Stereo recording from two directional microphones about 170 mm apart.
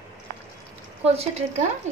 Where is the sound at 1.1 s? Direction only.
40° right (ahead or behind).